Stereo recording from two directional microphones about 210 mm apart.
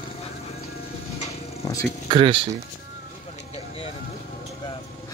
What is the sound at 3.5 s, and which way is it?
Vehicle, 30° left (ahead or behind).